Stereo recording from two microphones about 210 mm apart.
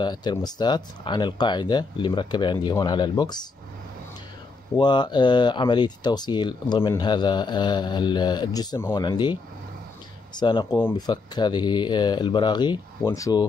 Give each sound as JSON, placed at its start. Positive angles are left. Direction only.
{"t": 0.0, "sound": "speech", "side_deg": 20}
{"t": 4.7, "sound": "speech", "side_deg": 20}